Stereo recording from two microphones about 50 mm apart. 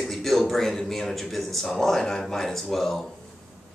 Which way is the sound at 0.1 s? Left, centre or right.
Centre.